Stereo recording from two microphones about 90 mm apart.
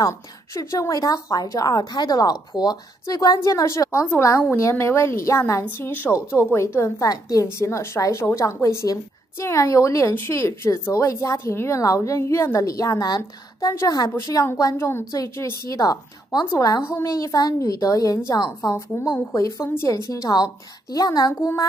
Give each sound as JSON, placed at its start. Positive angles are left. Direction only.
{"t": 0.6, "sound": "a woman's voice", "side_deg": 40}
{"t": 15.7, "sound": "a woman's voice", "side_deg": 45}